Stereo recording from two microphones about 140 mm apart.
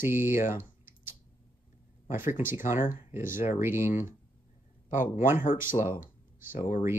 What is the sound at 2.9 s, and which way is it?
Speech, 70° left (ahead or behind).